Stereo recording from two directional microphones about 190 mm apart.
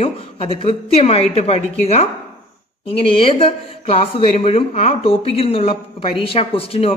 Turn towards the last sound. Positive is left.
turn(degrees=30)  # may be behind; listen again after turning